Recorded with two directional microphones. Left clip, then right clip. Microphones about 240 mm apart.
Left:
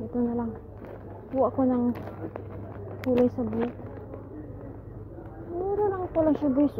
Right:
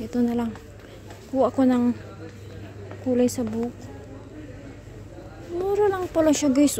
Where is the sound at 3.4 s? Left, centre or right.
Right.